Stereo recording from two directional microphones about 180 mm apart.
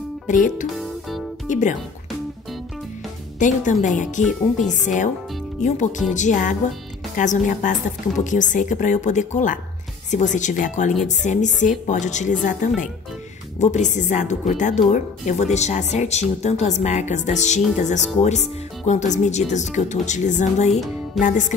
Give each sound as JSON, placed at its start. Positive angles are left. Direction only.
{"t": 0.3, "sound": "a woman's voice", "side_deg": 45}
{"t": 3.3, "sound": "a woman's voice", "side_deg": 45}